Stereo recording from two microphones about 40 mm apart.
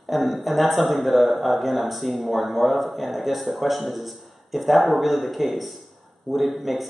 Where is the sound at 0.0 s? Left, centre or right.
Centre.